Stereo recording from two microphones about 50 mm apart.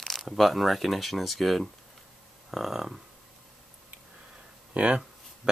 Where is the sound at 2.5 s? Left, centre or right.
Centre.